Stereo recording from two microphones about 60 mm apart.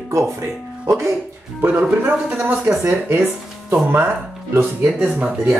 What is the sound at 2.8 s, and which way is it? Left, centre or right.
Speech, right.